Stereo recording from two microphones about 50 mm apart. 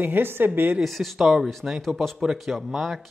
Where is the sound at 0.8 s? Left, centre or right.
Centre.